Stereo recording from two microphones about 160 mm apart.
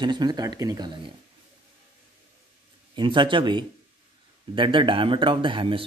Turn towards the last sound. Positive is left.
turn(degrees=-30)  # may be behind; listen again after turning